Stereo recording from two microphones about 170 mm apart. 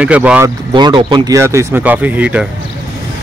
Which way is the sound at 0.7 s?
25° right (ahead or behind).